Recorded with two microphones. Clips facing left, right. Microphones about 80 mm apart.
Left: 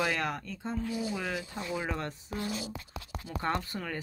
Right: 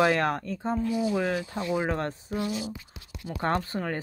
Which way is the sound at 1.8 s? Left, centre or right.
Right.